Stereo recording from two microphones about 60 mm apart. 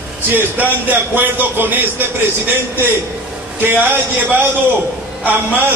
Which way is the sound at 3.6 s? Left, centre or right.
Right.